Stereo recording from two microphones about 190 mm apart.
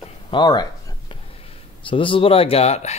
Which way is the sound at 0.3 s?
20° left (ahead or behind).